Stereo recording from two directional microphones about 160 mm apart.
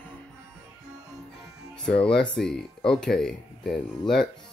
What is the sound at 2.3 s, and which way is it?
Speech, 5° left (ahead or behind).